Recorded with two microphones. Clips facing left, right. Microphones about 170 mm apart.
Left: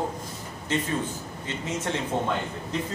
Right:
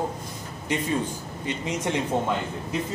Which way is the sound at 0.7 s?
15° right (ahead or behind).